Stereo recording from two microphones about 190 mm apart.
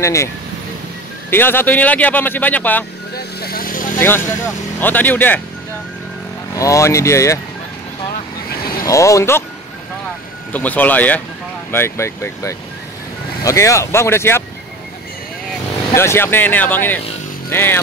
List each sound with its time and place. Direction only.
0.0 s speech: 15° left (ahead or behind)
1.3 s speech: 10° left (ahead or behind)
3.2 s vehicle: 55° left (ahead or behind)
4.7 s speech: 10° left (ahead or behind)
6.5 s speech: 15° left (ahead or behind)
8.8 s speech: 15° left (ahead or behind)
10.5 s speech: 10° left (ahead or behind)
15.9 s speech: 15° left (ahead or behind)